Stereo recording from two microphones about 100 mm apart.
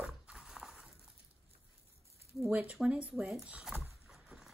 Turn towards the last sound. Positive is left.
turn(degrees=-5)  # may be behind; listen again after turning